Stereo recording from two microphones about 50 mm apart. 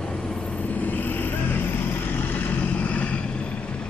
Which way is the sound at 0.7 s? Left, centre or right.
Left.